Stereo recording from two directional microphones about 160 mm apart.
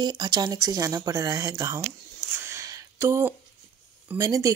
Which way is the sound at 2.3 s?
15° right (ahead or behind).